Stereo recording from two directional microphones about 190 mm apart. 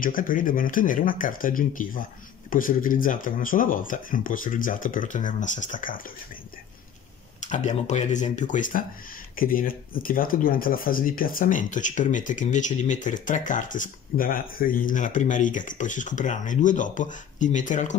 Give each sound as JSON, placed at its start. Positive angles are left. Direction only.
{"t": 0.0, "sound": "speech", "side_deg": 45}
{"t": 7.3, "sound": "speech", "side_deg": 40}